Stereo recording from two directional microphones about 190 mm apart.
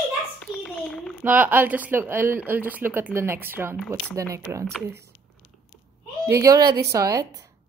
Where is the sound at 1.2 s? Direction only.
10° right (ahead or behind).